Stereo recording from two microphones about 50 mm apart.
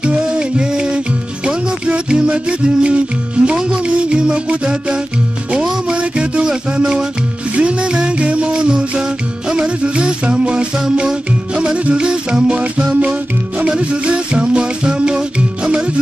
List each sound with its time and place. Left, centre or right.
0.0 s music: centre